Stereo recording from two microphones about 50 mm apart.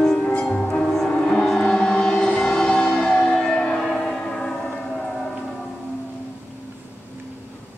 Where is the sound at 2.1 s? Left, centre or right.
Left.